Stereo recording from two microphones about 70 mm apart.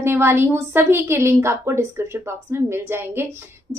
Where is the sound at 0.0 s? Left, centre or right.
Right.